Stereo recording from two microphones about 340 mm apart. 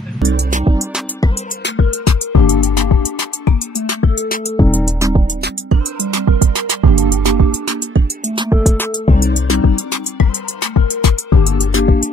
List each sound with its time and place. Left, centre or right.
0.5 s music: right
1.6 s music: left
2.3 s music: left
3.7 s music: left
4.2 s music: left
4.6 s music: centre
5.7 s music: right
8.3 s music: centre
9.0 s music: left
9.5 s music: left
10.1 s music: left
11.7 s music: left